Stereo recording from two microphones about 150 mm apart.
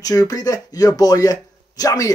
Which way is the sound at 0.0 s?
25° left (ahead or behind).